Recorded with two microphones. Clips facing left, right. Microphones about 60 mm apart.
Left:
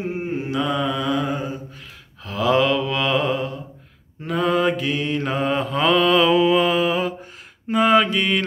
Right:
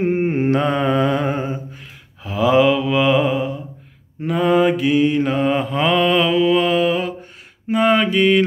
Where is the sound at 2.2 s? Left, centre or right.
Centre.